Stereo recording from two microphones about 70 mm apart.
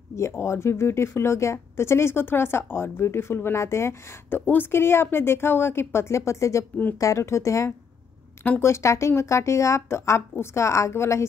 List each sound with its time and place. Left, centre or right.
0.1 s speech: left